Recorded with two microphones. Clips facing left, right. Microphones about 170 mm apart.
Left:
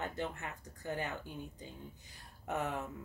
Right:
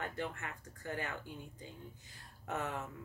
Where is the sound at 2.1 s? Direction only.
15° left (ahead or behind).